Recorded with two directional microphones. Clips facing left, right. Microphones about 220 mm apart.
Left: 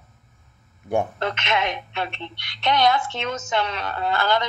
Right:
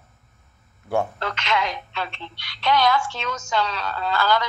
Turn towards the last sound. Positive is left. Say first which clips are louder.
# even
turn(degrees=20)  # may be behind; listen again after turning